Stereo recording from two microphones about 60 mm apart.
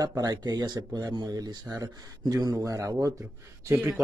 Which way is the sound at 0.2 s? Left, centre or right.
Right.